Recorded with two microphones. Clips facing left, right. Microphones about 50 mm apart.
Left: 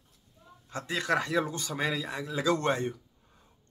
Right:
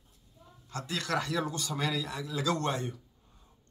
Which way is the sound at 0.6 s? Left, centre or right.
Left.